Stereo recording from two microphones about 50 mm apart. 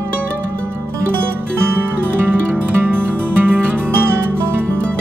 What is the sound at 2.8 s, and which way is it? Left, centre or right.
Music, right.